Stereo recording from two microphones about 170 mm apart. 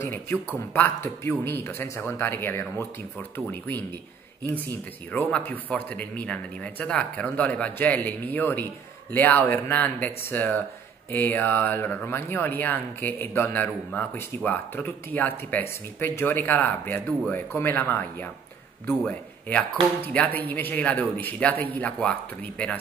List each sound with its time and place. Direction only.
0.0 s speech: 15° left (ahead or behind)
5.1 s speech: 10° left (ahead or behind)